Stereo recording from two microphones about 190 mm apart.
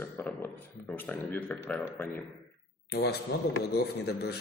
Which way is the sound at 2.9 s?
55° left (ahead or behind).